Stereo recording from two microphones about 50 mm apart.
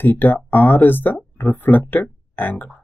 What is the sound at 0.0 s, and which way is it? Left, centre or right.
Speech, left.